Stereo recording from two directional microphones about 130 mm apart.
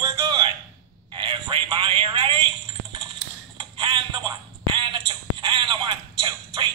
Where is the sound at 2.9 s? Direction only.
40° right (ahead or behind).